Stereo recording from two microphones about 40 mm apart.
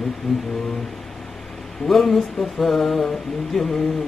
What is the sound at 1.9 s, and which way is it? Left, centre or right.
Mantra, centre.